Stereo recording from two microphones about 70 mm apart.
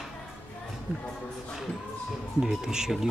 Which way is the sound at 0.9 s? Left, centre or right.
Right.